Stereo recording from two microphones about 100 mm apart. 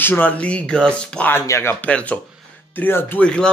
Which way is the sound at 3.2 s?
10° left (ahead or behind).